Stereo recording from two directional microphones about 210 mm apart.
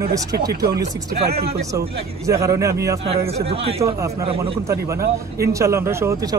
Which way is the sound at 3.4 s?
30° right (ahead or behind).